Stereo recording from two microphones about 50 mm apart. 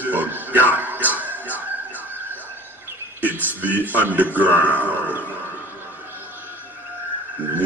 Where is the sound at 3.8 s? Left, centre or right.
Right.